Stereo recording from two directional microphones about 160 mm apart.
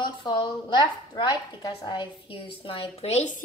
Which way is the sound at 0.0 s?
30° left (ahead or behind).